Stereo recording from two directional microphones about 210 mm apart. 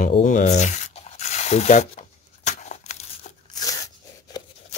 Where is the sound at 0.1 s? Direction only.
35° left (ahead or behind).